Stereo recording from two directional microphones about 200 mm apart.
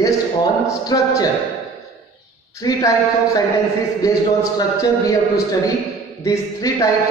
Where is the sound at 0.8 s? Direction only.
15° left (ahead or behind).